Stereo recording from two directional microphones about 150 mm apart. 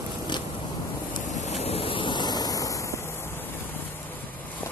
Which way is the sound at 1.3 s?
45° left (ahead or behind).